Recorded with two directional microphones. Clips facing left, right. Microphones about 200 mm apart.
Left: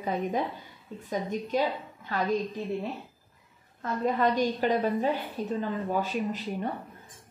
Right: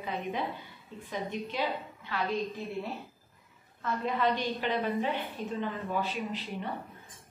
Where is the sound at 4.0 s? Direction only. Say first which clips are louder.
Left 5 dB; 45° left (ahead or behind).